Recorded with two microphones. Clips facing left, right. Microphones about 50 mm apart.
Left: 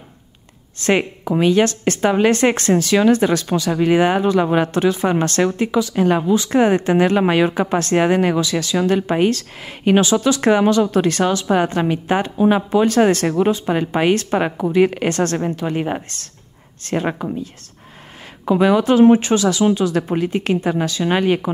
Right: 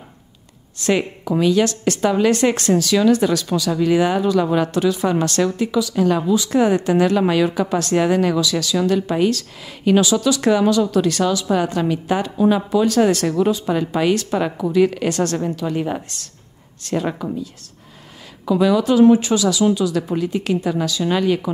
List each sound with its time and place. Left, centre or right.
0.7 s speech: left